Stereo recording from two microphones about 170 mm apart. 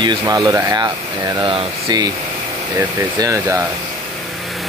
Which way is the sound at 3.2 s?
20° right (ahead or behind).